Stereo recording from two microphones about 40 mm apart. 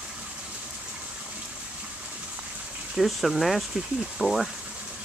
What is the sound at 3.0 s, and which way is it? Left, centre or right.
Speech, centre.